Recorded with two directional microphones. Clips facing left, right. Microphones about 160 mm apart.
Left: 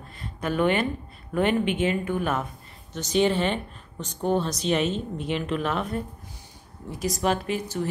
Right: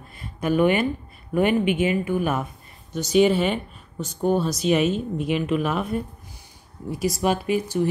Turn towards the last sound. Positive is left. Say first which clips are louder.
# right 6 dB
turn(degrees=-10)  # may be behind; listen again after turning